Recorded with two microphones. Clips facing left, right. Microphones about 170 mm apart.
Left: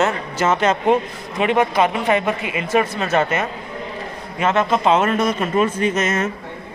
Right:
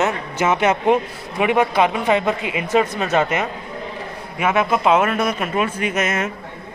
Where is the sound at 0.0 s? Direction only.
15° right (ahead or behind).